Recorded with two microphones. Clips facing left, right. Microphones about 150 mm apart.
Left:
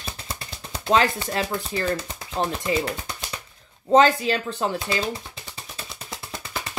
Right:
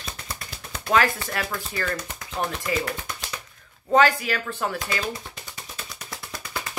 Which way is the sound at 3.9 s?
25° left (ahead or behind).